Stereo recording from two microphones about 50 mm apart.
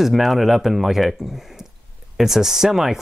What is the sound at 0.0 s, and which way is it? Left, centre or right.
Speech, centre.